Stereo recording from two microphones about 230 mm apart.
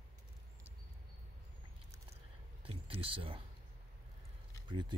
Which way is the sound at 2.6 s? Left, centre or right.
Right.